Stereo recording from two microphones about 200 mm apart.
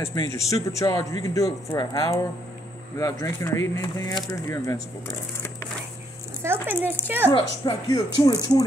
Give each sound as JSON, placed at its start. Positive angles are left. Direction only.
{"t": 0.0, "sound": "speech", "side_deg": 15}
{"t": 6.4, "sound": "speech", "side_deg": -10}
{"t": 7.3, "sound": "speech", "side_deg": 20}